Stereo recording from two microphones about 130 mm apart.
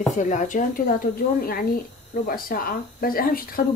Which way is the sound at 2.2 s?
90° left.